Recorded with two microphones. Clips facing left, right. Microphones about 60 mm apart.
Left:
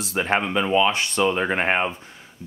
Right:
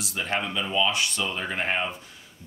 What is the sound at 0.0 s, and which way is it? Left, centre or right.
Speech, left.